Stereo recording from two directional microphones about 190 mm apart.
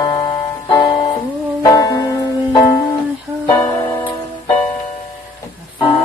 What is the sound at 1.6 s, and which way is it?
Music, 20° left (ahead or behind).